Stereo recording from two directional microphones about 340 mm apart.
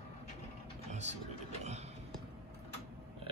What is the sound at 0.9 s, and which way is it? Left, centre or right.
Vehicle, centre.